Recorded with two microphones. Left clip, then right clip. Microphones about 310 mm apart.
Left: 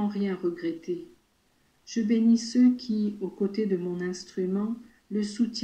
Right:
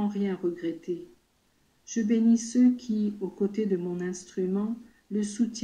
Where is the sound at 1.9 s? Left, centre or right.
Centre.